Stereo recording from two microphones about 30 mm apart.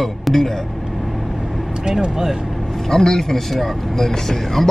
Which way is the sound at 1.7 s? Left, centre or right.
Right.